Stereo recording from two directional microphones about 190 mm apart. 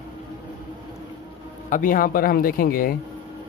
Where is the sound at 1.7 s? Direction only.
45° left (ahead or behind).